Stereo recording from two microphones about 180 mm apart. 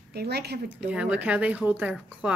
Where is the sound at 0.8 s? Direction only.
5° right (ahead or behind).